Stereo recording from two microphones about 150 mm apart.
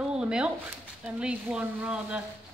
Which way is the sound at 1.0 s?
5° right (ahead or behind).